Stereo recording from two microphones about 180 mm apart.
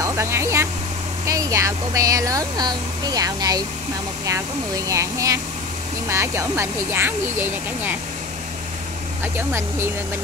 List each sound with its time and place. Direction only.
0.0 s vehicle: 15° right (ahead or behind)
1.2 s speech: 15° right (ahead or behind)
9.5 s speech: 15° right (ahead or behind)